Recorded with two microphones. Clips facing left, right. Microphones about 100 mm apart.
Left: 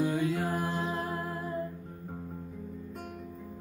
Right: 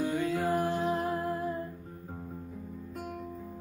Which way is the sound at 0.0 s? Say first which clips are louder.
Left 1 dB; 15° left (ahead or behind).